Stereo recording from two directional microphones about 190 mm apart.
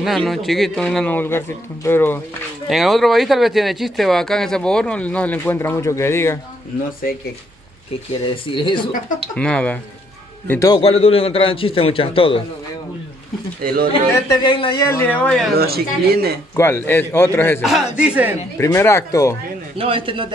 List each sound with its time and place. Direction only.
0.0 s speech: centre (ahead or behind)
2.7 s speech: centre (ahead or behind)
8.5 s a man's voice: 25° left (ahead or behind)
9.3 s speech: 5° left (ahead or behind)
10.5 s speech: 15° left (ahead or behind)
10.8 s a man's voice: 30° left (ahead or behind)
13.6 s speech: 50° right (ahead or behind)
13.9 s speech: 25° left (ahead or behind); by 15.5 s 5° left (ahead or behind)
15.5 s speech: 55° right (ahead or behind)
16.5 s speech: 10° left (ahead or behind)
17.6 s speech: centre (ahead or behind)
18.6 s speech: 15° left (ahead or behind)
19.8 s a man's voice: 30° right (ahead or behind)